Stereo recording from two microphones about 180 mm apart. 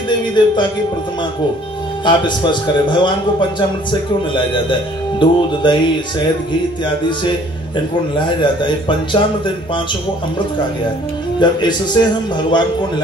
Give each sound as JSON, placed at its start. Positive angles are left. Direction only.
{"t": 0.1, "sound": "a man's voice", "side_deg": 25}
{"t": 2.0, "sound": "a man's voice", "side_deg": 25}
{"t": 11.3, "sound": "a man's voice", "side_deg": 25}